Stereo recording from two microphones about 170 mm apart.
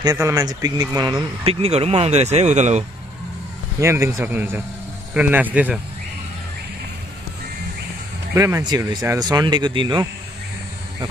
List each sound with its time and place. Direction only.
0.0 s speech: 20° right (ahead or behind); by 2.8 s 45° right (ahead or behind)
3.8 s speech: 15° right (ahead or behind)
8.4 s speech: 20° right (ahead or behind)